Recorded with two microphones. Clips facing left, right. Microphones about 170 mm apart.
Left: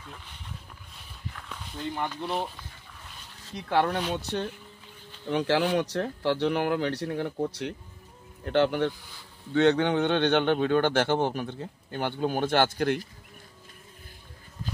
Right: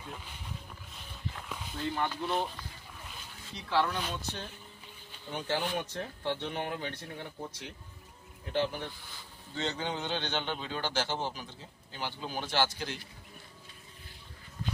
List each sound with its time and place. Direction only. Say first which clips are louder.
1.5 s dog: even; 5° right (ahead or behind)
2.0 s speech: left 1 dB; centre (ahead or behind)
3.4 s a man's voice: left 5 dB; 50° left (ahead or behind); by 4.5 s 70° left (ahead or behind)
5.3 s a man's voice: left 9 dB; 80° left; by 13.0 s 55° left (ahead or behind)